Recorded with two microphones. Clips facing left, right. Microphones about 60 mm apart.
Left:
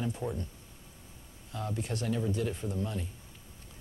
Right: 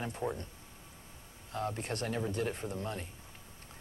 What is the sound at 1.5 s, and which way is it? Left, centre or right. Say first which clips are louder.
Speech: even; right.